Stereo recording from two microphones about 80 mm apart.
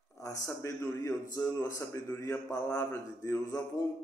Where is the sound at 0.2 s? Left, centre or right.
Left.